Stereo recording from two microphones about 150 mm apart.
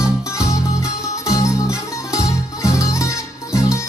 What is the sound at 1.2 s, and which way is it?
Music, 20° left (ahead or behind).